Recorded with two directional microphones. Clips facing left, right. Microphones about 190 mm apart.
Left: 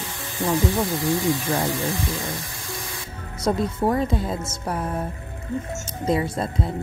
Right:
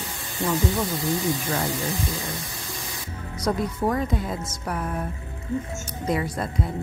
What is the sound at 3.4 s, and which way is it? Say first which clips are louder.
Speech: left 3 dB; 25° left (ahead or behind).